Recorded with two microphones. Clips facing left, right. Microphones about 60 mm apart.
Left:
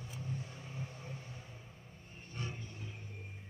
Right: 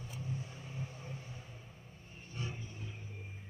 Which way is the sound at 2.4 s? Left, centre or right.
Left.